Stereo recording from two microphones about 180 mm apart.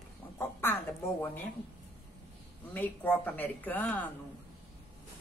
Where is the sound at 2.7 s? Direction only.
10° left (ahead or behind).